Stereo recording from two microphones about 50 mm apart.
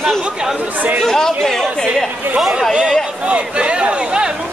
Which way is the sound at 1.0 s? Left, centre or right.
Centre.